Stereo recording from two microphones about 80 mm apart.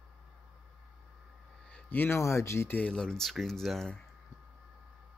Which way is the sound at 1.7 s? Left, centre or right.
Left.